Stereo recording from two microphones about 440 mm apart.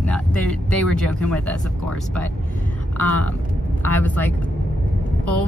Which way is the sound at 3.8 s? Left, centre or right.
Centre.